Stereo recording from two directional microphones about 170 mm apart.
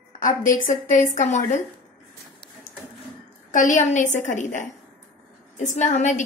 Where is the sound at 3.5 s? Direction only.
50° left (ahead or behind).